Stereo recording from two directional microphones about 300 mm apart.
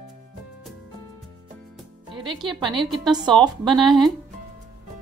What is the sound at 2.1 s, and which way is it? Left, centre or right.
A woman's voice, centre.